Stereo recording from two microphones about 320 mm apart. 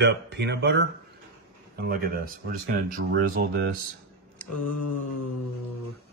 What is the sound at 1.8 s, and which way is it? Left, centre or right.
Speech, right.